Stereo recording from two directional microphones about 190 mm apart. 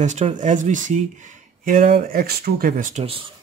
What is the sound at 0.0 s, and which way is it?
Speech, 40° right (ahead or behind).